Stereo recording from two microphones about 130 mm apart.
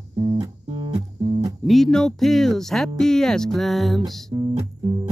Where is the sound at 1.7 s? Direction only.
5° left (ahead or behind).